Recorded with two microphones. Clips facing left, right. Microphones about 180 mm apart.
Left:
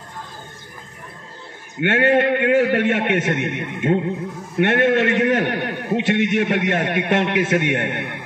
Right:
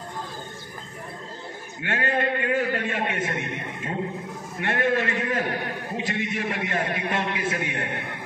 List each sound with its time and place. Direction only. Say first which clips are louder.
1.8 s a man's voice: left 10 dB; 70° left (ahead or behind)